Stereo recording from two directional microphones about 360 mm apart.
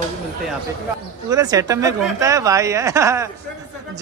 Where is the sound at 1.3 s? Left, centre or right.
Centre.